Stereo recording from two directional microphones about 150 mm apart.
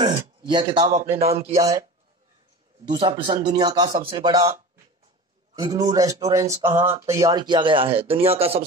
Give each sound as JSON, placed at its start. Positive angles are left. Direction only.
{"t": 0.5, "sound": "speech", "side_deg": -30}
{"t": 1.1, "sound": "speech", "side_deg": -45}
{"t": 1.5, "sound": "a man's voice", "side_deg": -20}
{"t": 2.9, "sound": "speech", "side_deg": -30}
{"t": 5.6, "sound": "a man's voice", "side_deg": -25}